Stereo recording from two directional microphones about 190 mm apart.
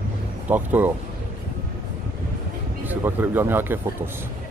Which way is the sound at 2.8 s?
10° right (ahead or behind).